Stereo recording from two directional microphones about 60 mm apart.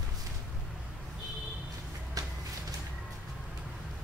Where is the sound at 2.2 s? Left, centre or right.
Right.